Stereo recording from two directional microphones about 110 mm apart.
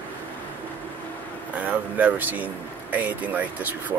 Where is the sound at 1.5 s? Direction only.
15° right (ahead or behind).